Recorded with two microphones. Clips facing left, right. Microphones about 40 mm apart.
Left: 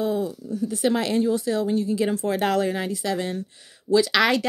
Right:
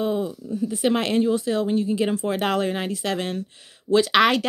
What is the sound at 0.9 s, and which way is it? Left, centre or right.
Speech, right.